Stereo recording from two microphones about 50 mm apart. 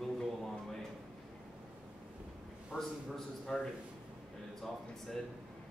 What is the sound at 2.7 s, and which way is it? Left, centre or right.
Speech, right.